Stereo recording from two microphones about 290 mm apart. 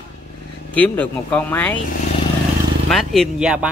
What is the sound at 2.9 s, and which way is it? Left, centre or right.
Speech, centre.